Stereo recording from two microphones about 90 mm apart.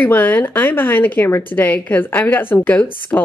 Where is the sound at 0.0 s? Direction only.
20° left (ahead or behind).